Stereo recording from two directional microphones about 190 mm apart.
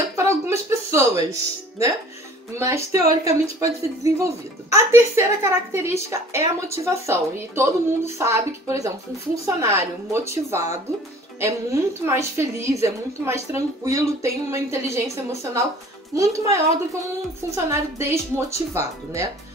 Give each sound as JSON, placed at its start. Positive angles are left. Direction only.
{"t": 0.2, "sound": "music", "side_deg": -15}
{"t": 2.6, "sound": "speech", "side_deg": -15}
{"t": 16.2, "sound": "speech", "side_deg": -15}
{"t": 17.6, "sound": "speech", "side_deg": -15}